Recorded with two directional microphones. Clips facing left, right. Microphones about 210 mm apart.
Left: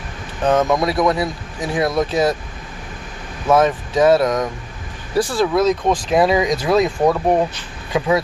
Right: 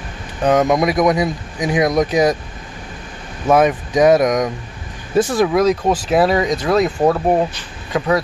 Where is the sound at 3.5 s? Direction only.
15° right (ahead or behind).